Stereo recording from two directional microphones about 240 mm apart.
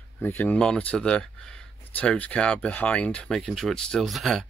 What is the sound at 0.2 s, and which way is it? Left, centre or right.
Speech, centre.